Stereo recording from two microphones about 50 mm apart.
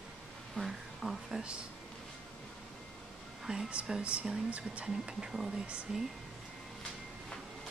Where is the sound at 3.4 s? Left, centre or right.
Centre.